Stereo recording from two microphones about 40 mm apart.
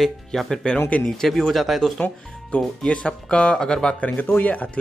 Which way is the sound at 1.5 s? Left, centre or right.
Centre.